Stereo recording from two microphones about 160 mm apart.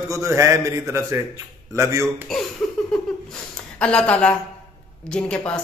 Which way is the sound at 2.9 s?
5° left (ahead or behind).